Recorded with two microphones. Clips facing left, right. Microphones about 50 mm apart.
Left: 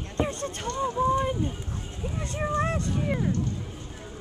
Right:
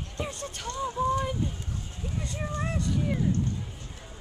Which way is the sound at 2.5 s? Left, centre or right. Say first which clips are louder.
Left 2 dB; left.